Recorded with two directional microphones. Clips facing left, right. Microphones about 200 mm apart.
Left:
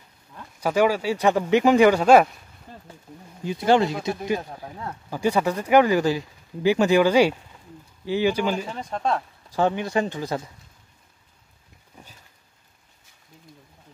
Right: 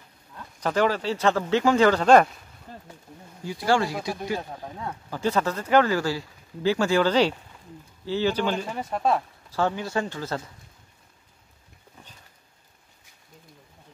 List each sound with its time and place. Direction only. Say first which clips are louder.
0.6 s speech: left 3 dB; 10° left (ahead or behind)
3.4 s speech: left 4 dB; 20° left (ahead or behind)
4.6 s speech: even; 10° left (ahead or behind)
8.6 s speech: right 1 dB; 5° right (ahead or behind)
9.5 s speech: left 3 dB; 20° left (ahead or behind)